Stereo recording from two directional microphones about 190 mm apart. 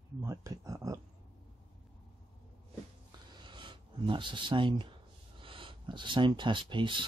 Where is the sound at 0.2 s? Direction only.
15° right (ahead or behind).